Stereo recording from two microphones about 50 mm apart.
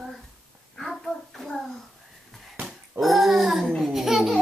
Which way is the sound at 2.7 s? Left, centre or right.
Centre.